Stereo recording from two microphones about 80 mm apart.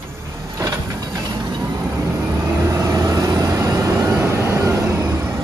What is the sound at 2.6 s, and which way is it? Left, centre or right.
Vehicle, right.